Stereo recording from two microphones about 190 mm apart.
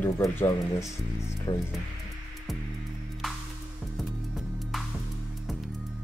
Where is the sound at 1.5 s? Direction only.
20° left (ahead or behind).